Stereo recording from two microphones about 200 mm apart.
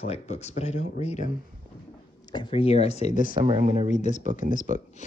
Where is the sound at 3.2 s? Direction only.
25° right (ahead or behind).